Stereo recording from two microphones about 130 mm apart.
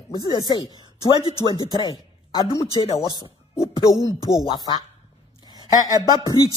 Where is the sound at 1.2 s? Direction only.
30° right (ahead or behind).